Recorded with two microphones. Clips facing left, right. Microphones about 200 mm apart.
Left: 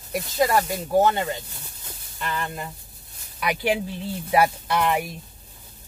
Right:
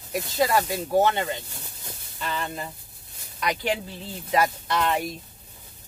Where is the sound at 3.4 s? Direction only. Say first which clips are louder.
Left 3 dB; 10° left (ahead or behind).